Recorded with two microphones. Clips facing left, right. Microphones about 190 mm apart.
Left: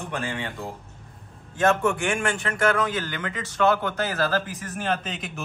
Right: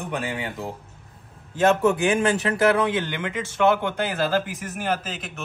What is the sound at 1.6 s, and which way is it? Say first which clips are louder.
A man's voice: right 3 dB; 20° right (ahead or behind).